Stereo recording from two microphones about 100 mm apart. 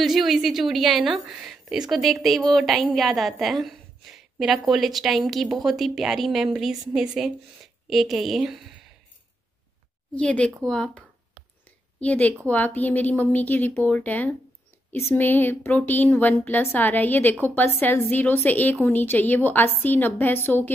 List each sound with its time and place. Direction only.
0.0 s speech: centre (ahead or behind)
10.1 s a woman's voice: 10° left (ahead or behind)